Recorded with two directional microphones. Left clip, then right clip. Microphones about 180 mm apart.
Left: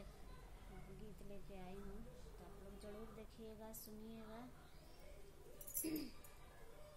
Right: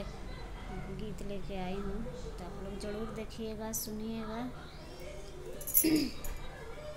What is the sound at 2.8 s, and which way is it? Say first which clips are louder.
A woman's voice: right 16 dB; 10° right (ahead or behind).